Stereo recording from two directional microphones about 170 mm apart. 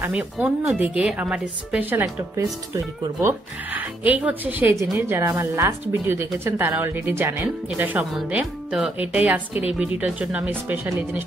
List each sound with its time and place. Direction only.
0.0 s a woman's voice: 10° right (ahead or behind)